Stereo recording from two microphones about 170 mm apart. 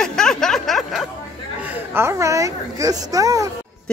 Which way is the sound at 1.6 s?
10° right (ahead or behind).